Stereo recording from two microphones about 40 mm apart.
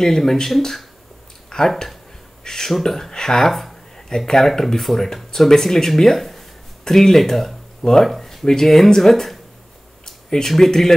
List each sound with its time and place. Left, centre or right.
0.0 s speech: centre
1.5 s a sound: centre
2.4 s speech: centre